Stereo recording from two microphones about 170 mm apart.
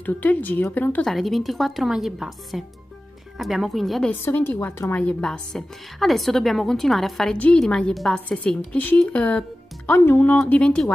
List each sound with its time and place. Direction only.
0.0 s a woman's voice: 10° left (ahead or behind)
4.1 s a woman's voice: 10° left (ahead or behind)